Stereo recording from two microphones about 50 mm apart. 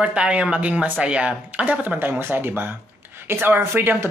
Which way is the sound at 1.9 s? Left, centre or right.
Right.